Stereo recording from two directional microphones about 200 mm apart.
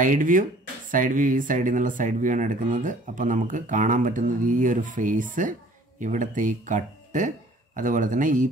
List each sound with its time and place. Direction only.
0.0 s speech: 40° right (ahead or behind)